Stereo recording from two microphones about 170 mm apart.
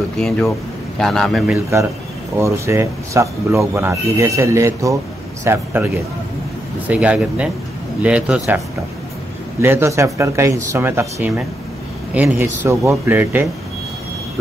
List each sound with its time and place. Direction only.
0.2 s a man's voice: 5° left (ahead or behind)
2.3 s speech: 15° right (ahead or behind)
6.9 s speech: 5° right (ahead or behind)
9.6 s speech: 15° right (ahead or behind)